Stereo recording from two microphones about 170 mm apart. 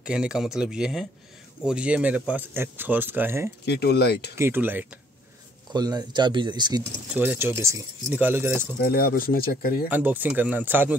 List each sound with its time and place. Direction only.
0.0 s speech: 5° right (ahead or behind)
3.6 s speech: 75° left (ahead or behind)
4.4 s speech: 10° right (ahead or behind)
5.7 s speech: 25° right (ahead or behind)
7.2 s speech: 10° right (ahead or behind)
8.8 s speech: 60° left (ahead or behind)
9.8 s speech: 10° right (ahead or behind)